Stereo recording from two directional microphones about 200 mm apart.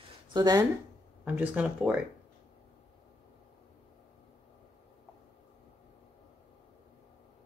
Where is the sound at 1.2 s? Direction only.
10° right (ahead or behind).